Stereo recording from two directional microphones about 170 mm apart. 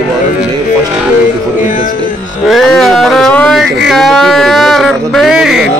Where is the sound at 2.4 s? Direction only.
Centre (ahead or behind).